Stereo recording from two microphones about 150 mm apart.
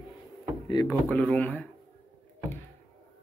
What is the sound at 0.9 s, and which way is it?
Speech, 5° left (ahead or behind).